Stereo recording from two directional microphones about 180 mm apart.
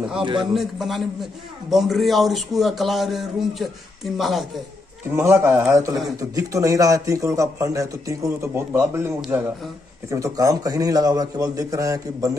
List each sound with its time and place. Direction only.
0.2 s a man's voice: 25° right (ahead or behind)
0.5 s a man's voice: centre (ahead or behind)
5.1 s a man's voice: 15° right (ahead or behind)